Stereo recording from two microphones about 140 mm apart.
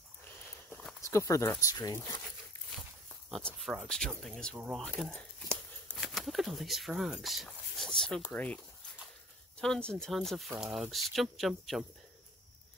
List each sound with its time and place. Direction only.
0.7 s walk: 5° left (ahead or behind)
1.0 s speech: 20° left (ahead or behind)
3.3 s speech: centre (ahead or behind)
9.6 s speech: 5° left (ahead or behind)